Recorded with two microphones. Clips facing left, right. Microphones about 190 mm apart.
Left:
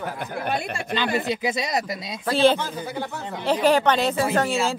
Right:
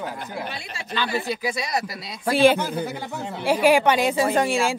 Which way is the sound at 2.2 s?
10° right (ahead or behind).